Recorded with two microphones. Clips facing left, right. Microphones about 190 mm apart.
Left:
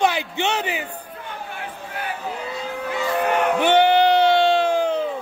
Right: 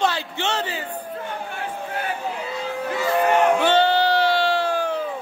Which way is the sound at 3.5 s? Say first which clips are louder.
Left 2 dB; 15° left (ahead or behind).